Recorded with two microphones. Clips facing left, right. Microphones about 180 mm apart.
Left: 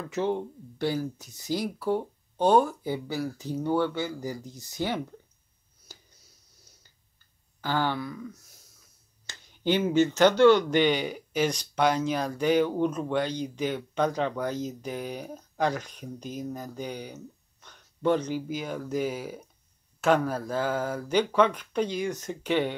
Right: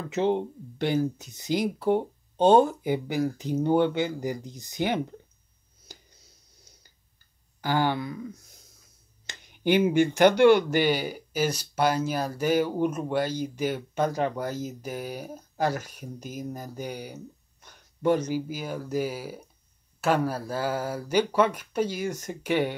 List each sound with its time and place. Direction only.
0.1 s speech: 20° right (ahead or behind)
7.6 s speech: 15° right (ahead or behind)
9.2 s speech: 15° right (ahead or behind)